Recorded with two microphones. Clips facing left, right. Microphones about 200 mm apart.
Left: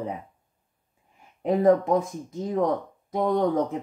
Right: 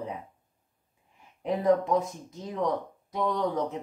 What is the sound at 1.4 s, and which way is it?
Speech, 50° left (ahead or behind).